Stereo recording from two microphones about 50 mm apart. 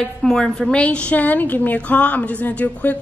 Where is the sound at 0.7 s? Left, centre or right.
Left.